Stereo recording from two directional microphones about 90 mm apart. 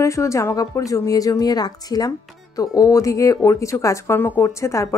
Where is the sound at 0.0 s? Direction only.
35° left (ahead or behind).